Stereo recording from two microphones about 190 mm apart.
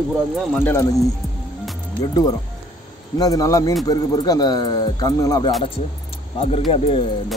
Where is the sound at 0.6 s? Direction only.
10° left (ahead or behind).